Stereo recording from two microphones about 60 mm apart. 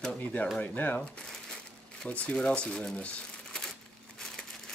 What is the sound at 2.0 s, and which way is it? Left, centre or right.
Speech, left.